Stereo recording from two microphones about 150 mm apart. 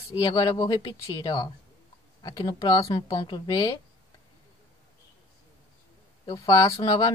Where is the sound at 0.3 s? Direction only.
25° left (ahead or behind).